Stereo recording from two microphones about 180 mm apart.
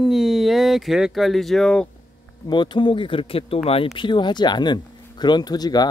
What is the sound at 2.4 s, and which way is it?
Speech, 25° left (ahead or behind).